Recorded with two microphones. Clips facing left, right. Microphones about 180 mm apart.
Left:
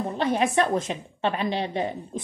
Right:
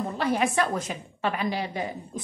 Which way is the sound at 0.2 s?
20° left (ahead or behind).